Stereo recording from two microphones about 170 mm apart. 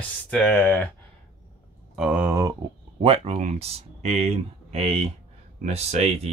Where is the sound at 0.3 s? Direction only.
10° left (ahead or behind).